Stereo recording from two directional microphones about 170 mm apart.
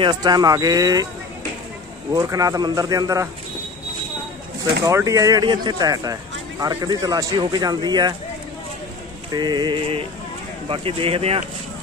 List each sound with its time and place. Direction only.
0.0 s speech: 25° right (ahead or behind)
2.1 s speech: 20° right (ahead or behind)
4.8 s speech: 20° right (ahead or behind)
9.3 s speech: 25° right (ahead or behind)